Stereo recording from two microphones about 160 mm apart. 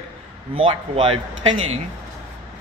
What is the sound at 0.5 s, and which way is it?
Speech, 35° right (ahead or behind).